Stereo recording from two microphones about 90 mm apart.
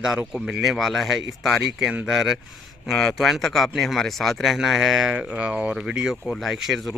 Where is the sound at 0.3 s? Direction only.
5° right (ahead or behind).